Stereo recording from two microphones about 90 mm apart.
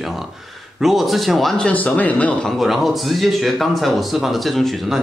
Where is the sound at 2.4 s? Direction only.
Centre (ahead or behind).